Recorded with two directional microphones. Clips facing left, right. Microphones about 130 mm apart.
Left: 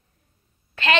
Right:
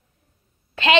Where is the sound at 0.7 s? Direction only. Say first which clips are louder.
Right 3 dB; 25° right (ahead or behind).